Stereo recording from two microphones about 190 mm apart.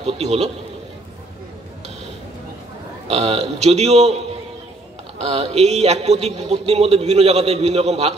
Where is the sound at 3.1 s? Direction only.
35° right (ahead or behind).